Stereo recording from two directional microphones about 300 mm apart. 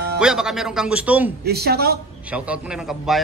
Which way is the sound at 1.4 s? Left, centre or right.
Right.